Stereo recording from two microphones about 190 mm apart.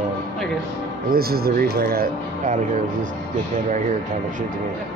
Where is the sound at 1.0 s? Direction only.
55° right (ahead or behind).